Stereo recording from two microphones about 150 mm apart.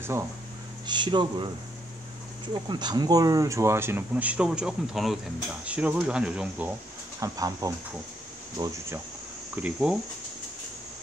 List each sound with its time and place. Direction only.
0.8 s speech: 30° right (ahead or behind)
2.7 s speech: 30° right (ahead or behind); by 6.7 s 5° right (ahead or behind)
7.2 s speech: 25° right (ahead or behind); by 9.9 s 5° right (ahead or behind)